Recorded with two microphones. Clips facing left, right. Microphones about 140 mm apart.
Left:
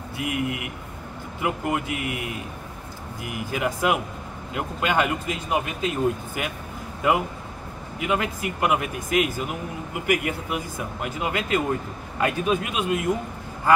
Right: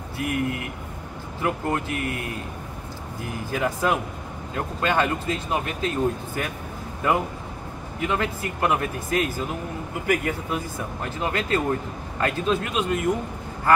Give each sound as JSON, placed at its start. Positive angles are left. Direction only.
{"t": 0.2, "sound": "speech", "side_deg": 15}
{"t": 8.0, "sound": "speech", "side_deg": 15}